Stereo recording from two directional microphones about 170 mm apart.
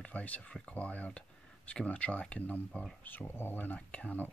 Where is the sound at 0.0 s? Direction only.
10° left (ahead or behind).